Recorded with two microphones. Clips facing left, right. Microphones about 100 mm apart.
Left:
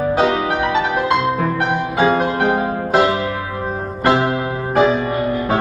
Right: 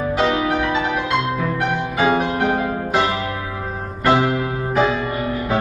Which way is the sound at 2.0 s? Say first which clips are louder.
Left 2 dB; 35° left (ahead or behind).